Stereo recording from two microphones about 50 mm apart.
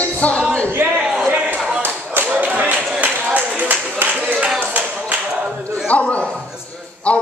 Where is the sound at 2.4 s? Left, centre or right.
Right.